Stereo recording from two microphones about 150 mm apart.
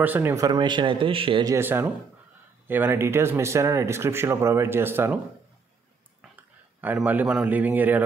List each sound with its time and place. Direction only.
0.0 s speech: 15° right (ahead or behind)
0.5 s speech: 30° right (ahead or behind)
1.4 s speech: 15° right (ahead or behind)
6.3 s speech: 10° right (ahead or behind)